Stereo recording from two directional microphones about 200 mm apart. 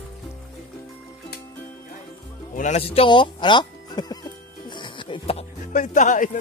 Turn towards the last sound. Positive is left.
turn(degrees=40)  # may be behind; listen again after turning